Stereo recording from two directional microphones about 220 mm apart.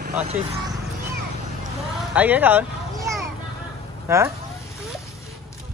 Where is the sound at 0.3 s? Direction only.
25° right (ahead or behind).